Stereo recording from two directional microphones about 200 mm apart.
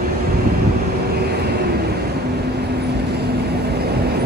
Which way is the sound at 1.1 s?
55° right (ahead or behind).